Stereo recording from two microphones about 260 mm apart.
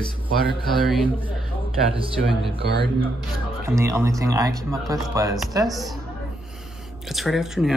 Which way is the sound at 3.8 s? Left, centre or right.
Centre.